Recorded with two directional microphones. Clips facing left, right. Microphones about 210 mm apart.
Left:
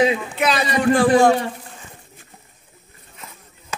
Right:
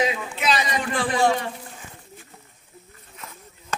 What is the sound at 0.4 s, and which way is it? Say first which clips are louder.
Speech: left 3 dB; 60° left (ahead or behind).